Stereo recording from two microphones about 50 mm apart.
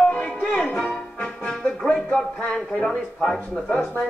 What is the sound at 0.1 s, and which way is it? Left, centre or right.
Music, left.